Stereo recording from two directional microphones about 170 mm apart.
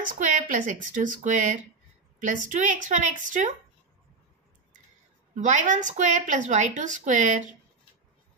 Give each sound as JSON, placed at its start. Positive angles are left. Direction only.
{"t": 0.2, "sound": "a woman's voice", "side_deg": -50}
{"t": 5.3, "sound": "a woman's voice", "side_deg": -45}